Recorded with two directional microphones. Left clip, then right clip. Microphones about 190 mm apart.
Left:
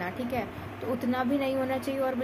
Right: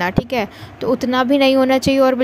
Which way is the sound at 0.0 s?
50° right (ahead or behind).